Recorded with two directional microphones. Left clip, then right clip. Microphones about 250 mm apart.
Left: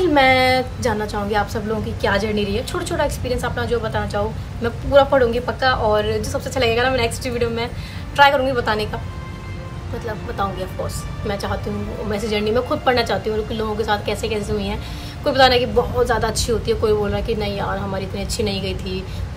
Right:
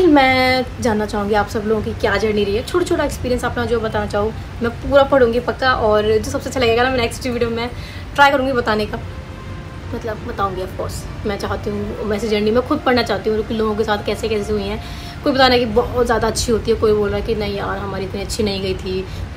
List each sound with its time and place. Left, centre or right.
0.0 s a woman's voice: centre
11.2 s a woman's voice: centre